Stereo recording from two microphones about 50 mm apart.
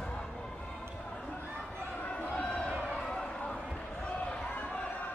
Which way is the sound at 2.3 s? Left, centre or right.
Left.